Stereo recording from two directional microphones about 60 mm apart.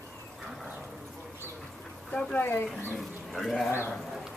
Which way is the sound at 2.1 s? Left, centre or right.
Centre.